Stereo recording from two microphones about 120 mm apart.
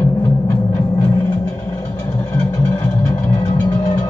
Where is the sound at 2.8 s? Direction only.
30° left (ahead or behind).